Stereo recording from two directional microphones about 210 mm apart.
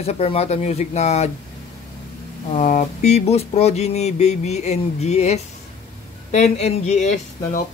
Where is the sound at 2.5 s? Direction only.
35° left (ahead or behind).